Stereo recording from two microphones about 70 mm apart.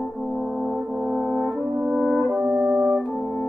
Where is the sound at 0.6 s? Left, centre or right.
Centre.